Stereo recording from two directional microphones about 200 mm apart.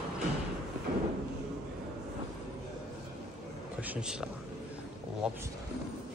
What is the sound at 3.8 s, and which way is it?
Speech, 5° right (ahead or behind).